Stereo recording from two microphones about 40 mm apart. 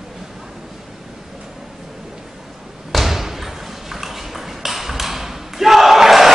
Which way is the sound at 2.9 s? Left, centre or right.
Centre.